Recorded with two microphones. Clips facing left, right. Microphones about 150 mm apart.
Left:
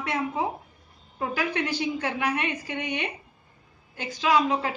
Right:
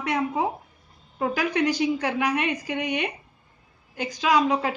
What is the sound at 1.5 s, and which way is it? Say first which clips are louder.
A woman's voice: right 5 dB; 15° right (ahead or behind).